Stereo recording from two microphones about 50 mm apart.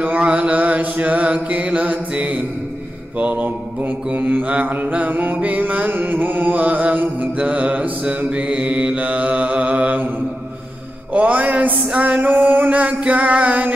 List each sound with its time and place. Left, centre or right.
0.2 s mantra: right
11.1 s mantra: right